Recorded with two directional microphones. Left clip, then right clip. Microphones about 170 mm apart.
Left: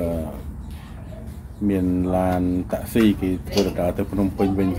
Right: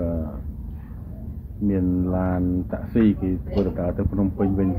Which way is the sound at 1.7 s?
20° left (ahead or behind).